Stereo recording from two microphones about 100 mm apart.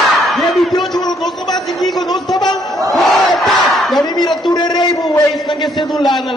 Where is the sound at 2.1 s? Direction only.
45° left (ahead or behind).